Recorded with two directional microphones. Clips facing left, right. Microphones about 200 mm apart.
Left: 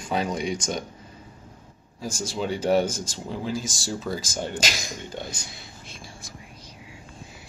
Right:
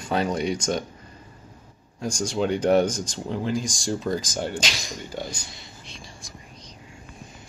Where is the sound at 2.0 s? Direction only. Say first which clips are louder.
Right 4 dB; 5° left (ahead or behind).